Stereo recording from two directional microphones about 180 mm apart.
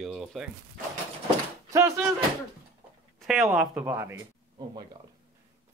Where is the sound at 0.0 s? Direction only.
Centre (ahead or behind).